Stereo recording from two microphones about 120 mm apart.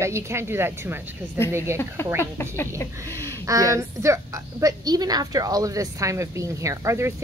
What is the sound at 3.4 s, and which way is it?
A woman's voice, 30° right (ahead or behind).